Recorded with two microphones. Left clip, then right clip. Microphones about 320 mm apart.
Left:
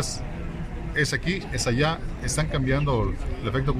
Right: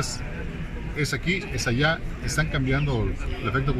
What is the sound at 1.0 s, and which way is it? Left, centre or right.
Speech, centre.